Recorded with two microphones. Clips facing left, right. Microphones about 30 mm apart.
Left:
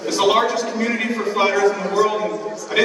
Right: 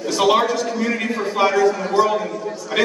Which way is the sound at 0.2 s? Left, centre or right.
Centre.